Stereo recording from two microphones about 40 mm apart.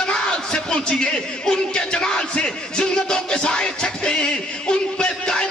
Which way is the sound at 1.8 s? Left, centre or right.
Left.